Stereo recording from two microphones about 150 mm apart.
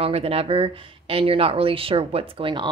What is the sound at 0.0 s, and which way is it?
A woman's voice, 40° right (ahead or behind).